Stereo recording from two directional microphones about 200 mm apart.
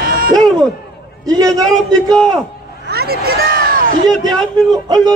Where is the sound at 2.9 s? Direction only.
50° right (ahead or behind).